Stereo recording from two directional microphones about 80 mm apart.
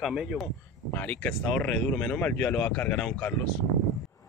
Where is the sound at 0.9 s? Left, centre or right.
Centre.